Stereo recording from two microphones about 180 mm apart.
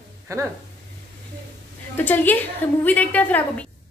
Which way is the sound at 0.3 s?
15° right (ahead or behind).